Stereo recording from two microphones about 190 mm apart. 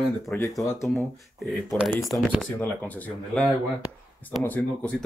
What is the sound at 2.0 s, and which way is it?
Speech, centre (ahead or behind).